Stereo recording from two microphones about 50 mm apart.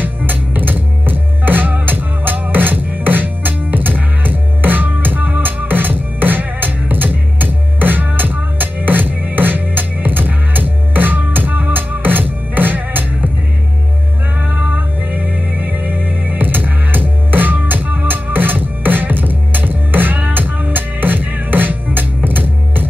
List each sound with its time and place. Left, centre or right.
0.0 s music: right
14.5 s music: right